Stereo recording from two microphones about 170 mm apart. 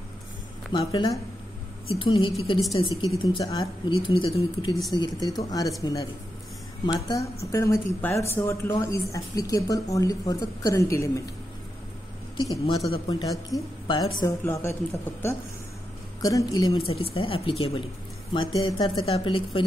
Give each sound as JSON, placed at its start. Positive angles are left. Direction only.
{"t": 0.7, "sound": "speech", "side_deg": 30}
{"t": 7.1, "sound": "a woman's voice", "side_deg": 20}
{"t": 12.4, "sound": "speech", "side_deg": 25}
{"t": 14.4, "sound": "a woman's voice", "side_deg": 15}
{"t": 16.2, "sound": "speech", "side_deg": 20}